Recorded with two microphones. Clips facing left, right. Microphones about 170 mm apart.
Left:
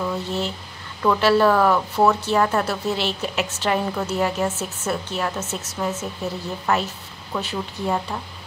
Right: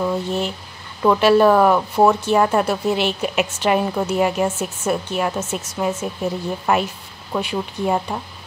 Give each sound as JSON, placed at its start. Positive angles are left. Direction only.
{"t": 1.0, "sound": "speech", "side_deg": -20}